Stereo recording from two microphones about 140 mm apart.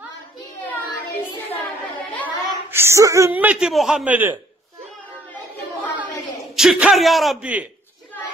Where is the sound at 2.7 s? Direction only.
20° right (ahead or behind).